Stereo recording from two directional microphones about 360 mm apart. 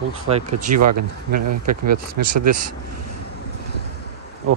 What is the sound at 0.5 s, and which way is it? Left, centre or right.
Speech, right.